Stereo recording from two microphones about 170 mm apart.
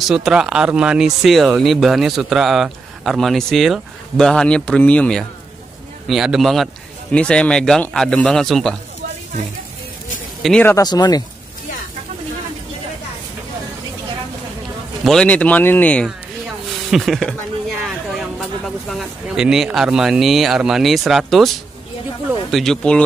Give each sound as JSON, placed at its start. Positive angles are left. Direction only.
{"t": 0.1, "sound": "speech", "side_deg": -5}
{"t": 10.4, "sound": "speech", "side_deg": 10}
{"t": 10.8, "sound": "speech", "side_deg": 25}
{"t": 15.0, "sound": "speech", "side_deg": 5}
{"t": 22.5, "sound": "speech", "side_deg": 0}